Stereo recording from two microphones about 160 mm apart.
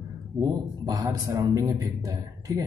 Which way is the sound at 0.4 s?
20° right (ahead or behind).